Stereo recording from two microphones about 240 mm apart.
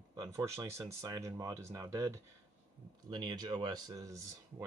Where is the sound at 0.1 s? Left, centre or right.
Centre.